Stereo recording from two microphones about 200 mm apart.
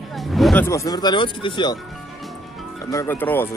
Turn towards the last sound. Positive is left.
turn(degrees=10)  # may be behind; listen again after turning